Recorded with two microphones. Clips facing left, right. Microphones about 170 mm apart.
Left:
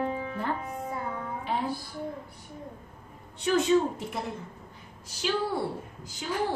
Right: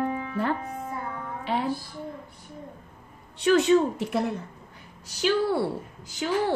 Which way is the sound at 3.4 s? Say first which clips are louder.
Right 4 dB; 75° right (ahead or behind).